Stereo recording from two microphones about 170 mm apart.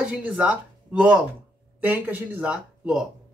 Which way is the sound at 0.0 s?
5° right (ahead or behind).